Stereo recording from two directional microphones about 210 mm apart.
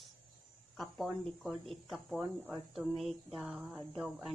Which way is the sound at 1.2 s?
Centre (ahead or behind).